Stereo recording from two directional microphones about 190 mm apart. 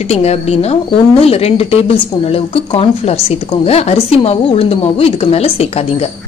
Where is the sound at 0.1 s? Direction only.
35° left (ahead or behind).